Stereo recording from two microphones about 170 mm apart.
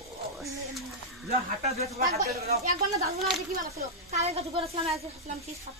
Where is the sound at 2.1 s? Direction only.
60° right (ahead or behind).